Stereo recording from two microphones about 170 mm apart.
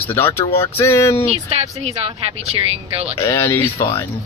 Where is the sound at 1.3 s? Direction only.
35° right (ahead or behind).